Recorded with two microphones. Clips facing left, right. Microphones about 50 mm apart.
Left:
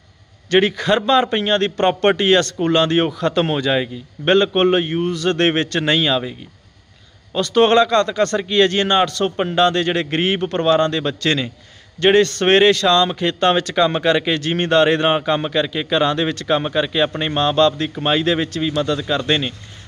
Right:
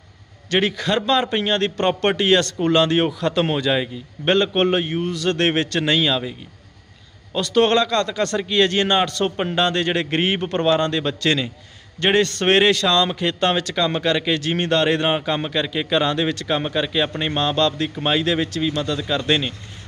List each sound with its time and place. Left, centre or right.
0.5 s a man's voice: centre
7.3 s a man's voice: centre
7.6 s a man's voice: centre
14.4 s a man's voice: centre